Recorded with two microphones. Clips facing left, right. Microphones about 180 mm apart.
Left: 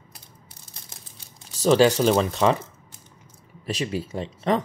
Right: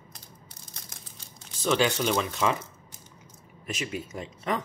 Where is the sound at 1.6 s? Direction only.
35° left (ahead or behind).